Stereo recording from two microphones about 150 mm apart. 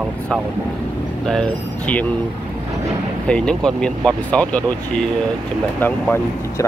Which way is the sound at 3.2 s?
5° left (ahead or behind).